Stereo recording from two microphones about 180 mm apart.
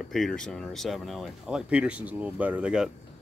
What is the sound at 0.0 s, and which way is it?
Speech, centre (ahead or behind).